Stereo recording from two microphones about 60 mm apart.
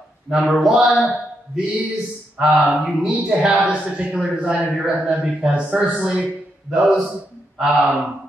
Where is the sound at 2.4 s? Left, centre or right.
Centre.